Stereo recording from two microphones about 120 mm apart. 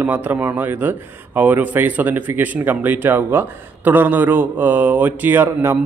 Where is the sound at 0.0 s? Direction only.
15° right (ahead or behind).